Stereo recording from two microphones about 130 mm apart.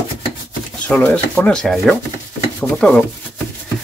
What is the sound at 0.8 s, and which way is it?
Speech, 10° left (ahead or behind).